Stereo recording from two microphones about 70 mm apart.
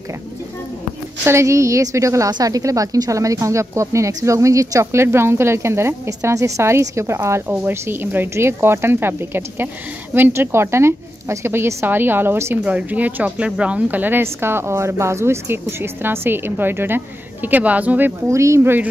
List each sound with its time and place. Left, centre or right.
1.2 s speech: right
2.3 s a woman's voice: right
12.6 s speech: right
14.2 s a woman's voice: right
18.3 s speech: right